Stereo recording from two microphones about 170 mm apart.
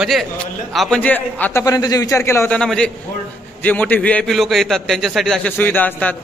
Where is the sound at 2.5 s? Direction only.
5° left (ahead or behind).